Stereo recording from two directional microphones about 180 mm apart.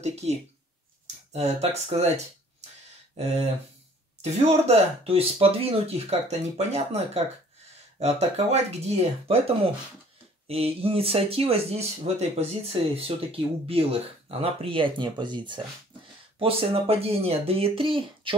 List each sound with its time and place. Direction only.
0.0 s speech: 35° right (ahead or behind)
8.0 s speech: 35° right (ahead or behind)
10.5 s speech: 35° right (ahead or behind)